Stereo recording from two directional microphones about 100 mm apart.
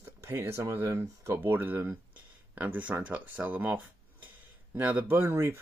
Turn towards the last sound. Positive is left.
turn(degrees=-25)  # may be behind; listen again after turning